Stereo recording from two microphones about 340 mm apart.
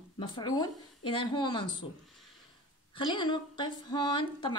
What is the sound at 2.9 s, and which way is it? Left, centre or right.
A woman's voice, centre.